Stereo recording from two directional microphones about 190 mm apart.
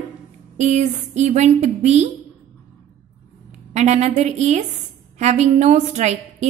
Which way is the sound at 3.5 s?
35° right (ahead or behind).